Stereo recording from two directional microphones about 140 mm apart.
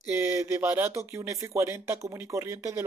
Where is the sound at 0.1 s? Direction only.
20° right (ahead or behind).